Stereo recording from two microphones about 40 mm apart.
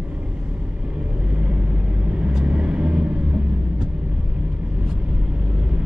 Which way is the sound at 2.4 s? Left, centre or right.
Right.